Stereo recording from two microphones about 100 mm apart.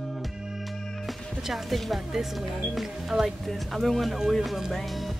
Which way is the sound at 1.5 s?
Centre (ahead or behind).